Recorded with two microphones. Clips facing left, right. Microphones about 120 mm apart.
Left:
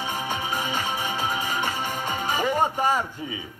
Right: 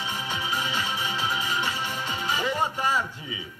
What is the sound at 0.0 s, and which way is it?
Music, 50° left (ahead or behind).